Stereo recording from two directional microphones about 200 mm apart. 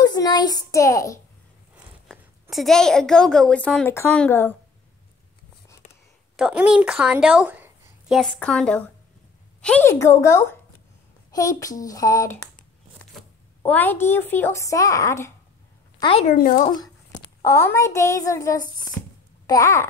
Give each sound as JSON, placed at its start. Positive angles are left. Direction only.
{"t": 0.0, "sound": "a child's voice", "side_deg": 20}
{"t": 2.5, "sound": "a child's voice", "side_deg": 0}
{"t": 6.3, "sound": "a woman's voice", "side_deg": -5}
{"t": 13.7, "sound": "speech", "side_deg": 10}
{"t": 16.0, "sound": "a woman's voice", "side_deg": 25}
{"t": 16.3, "sound": "speech", "side_deg": 45}
{"t": 16.6, "sound": "speech", "side_deg": 20}
{"t": 19.0, "sound": "a sound", "side_deg": 10}
{"t": 19.4, "sound": "speech", "side_deg": 15}